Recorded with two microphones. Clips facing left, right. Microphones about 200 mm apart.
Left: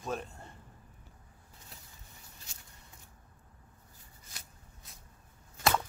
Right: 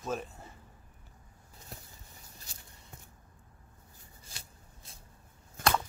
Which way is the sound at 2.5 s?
35° right (ahead or behind).